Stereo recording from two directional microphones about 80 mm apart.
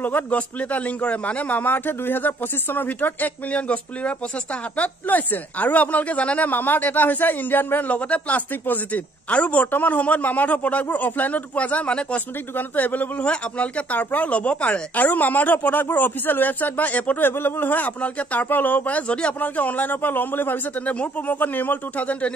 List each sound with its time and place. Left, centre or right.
0.0 s a man's voice: left